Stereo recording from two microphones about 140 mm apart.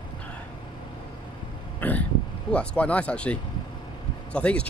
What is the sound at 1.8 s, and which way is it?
Burping, 10° left (ahead or behind).